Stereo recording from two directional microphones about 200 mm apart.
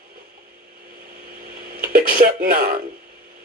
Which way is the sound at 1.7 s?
45° right (ahead or behind).